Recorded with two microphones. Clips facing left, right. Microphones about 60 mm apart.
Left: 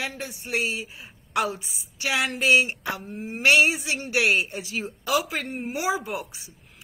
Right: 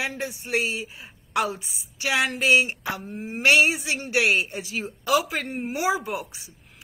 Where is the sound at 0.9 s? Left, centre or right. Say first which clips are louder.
Right 1 dB; centre.